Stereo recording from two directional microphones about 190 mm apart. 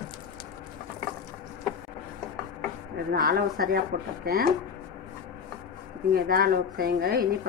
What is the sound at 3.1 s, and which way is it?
A woman's voice, 50° right (ahead or behind).